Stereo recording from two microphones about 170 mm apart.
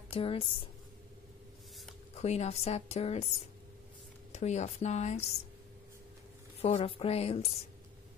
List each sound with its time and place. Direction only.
0.1 s a woman's voice: 35° left (ahead or behind)
2.1 s a woman's voice: 40° left (ahead or behind)
4.3 s a woman's voice: 40° left (ahead or behind)
6.6 s a woman's voice: 35° left (ahead or behind)